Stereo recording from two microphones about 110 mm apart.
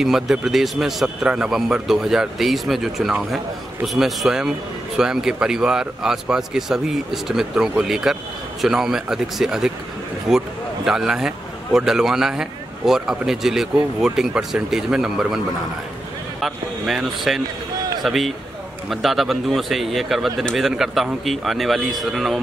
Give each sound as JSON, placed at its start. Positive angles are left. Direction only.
{"t": 0.0, "sound": "speech", "side_deg": -5}